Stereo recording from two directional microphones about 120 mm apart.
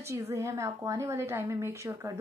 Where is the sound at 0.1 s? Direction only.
25° right (ahead or behind).